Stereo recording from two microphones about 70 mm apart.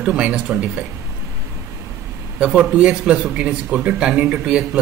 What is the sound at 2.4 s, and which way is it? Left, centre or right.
Speech, centre.